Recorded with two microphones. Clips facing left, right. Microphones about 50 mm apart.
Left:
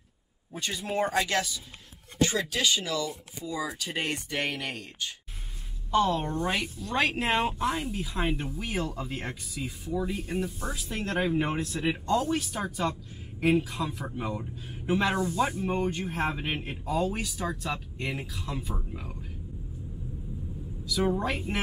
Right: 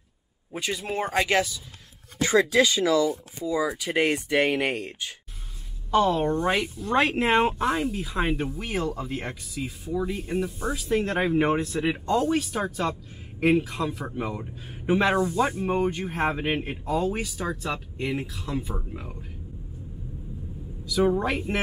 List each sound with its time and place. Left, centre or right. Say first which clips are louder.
0.6 s speech: right 1 dB; centre
3.5 s speech: right 8 dB; centre
5.9 s a woman's voice: right 4 dB; centre
18.6 s speech: right 3 dB; centre
20.9 s speech: right 5 dB; centre